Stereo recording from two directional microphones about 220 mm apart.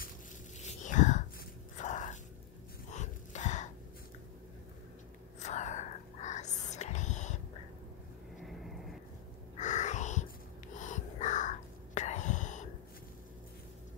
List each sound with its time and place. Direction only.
0.6 s whispering: 30° left (ahead or behind)
1.8 s a sound: 35° left (ahead or behind)
5.4 s whispering: 35° left (ahead or behind)
8.4 s vehicle: centre (ahead or behind)
9.6 s a sound: 35° left (ahead or behind)
10.8 s whispering: 35° left (ahead or behind)